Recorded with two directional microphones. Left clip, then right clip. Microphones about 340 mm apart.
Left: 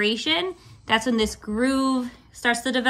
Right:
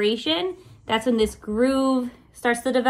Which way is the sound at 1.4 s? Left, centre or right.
Centre.